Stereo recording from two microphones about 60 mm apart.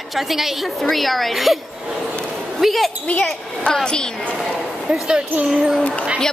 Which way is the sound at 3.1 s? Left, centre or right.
Centre.